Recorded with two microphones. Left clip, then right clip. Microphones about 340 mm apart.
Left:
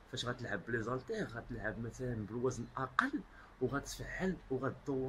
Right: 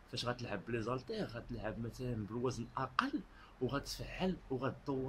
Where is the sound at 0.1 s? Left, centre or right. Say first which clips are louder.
Even; centre.